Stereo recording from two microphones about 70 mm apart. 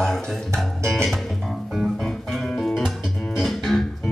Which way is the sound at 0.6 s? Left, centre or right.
Centre.